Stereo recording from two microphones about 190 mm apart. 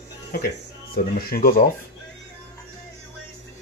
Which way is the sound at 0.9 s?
50° left (ahead or behind).